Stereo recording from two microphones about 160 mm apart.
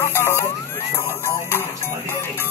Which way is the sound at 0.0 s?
15° left (ahead or behind).